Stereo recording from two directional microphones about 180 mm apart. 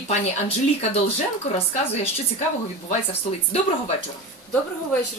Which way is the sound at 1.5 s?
35° left (ahead or behind).